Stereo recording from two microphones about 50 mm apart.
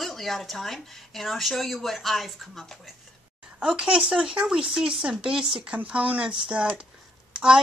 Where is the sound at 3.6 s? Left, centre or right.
Centre.